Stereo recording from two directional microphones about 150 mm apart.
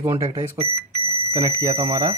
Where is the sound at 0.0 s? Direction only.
20° right (ahead or behind).